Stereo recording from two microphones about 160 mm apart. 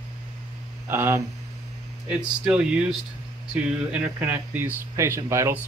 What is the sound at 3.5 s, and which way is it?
Speech, 5° right (ahead or behind).